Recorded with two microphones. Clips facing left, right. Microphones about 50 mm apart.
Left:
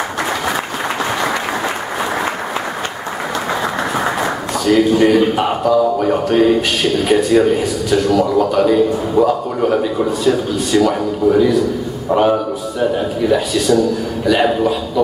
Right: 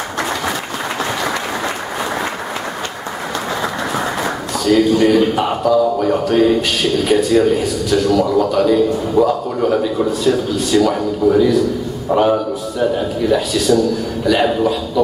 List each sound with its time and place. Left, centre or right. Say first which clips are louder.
3.9 s a man's voice: left 2 dB; centre